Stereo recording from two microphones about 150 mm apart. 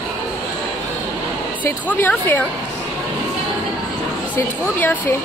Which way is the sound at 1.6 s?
10° left (ahead or behind).